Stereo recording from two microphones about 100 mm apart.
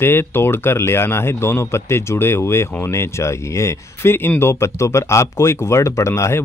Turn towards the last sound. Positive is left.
turn(degrees=30)  # may be behind; listen again after turning